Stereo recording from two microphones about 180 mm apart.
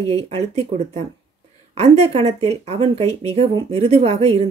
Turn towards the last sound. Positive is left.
turn(degrees=-35)  # may be behind; listen again after turning